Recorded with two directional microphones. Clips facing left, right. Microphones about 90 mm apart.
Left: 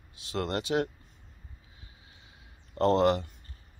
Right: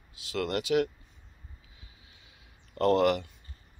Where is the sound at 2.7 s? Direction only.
30° left (ahead or behind).